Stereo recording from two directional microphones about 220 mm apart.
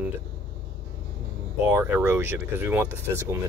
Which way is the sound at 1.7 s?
10° right (ahead or behind).